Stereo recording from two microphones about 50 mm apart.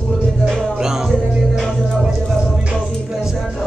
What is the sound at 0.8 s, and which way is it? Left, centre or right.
Music, centre.